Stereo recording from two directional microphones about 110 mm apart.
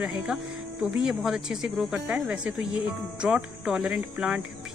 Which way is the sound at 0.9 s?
5° right (ahead or behind).